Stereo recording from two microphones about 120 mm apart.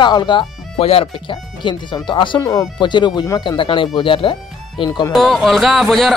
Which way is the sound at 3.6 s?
45° left (ahead or behind).